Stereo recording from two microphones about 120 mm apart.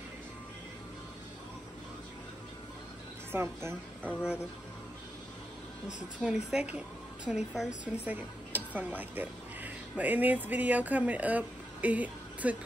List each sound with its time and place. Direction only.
3.3 s a woman's voice: 20° right (ahead or behind)
6.2 s a woman's voice: 10° right (ahead or behind)